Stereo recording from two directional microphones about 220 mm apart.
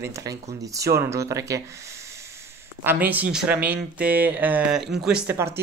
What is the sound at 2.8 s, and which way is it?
Speech, 10° right (ahead or behind).